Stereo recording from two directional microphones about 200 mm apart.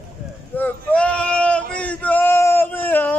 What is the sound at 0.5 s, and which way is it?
Male singing, 5° left (ahead or behind).